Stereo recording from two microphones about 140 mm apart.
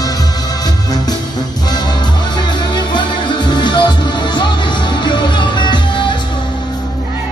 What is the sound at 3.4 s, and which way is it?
Music, 35° left (ahead or behind).